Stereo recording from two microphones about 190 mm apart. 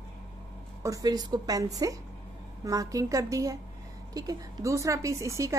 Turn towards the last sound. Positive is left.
turn(degrees=-15)  # may be behind; listen again after turning